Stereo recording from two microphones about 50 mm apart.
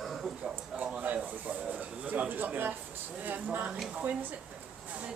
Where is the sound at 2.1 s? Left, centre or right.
Right.